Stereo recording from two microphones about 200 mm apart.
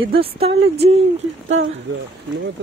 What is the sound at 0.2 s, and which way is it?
Speech, 30° right (ahead or behind).